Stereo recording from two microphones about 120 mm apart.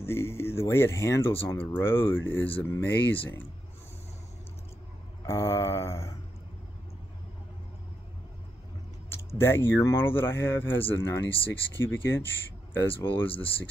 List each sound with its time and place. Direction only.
0.0 s speech: 20° left (ahead or behind)
5.2 s speech: 20° left (ahead or behind)
9.1 s speech: 20° left (ahead or behind)